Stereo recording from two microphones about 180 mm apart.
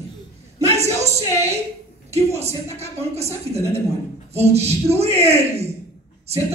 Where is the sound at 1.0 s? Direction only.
35° right (ahead or behind).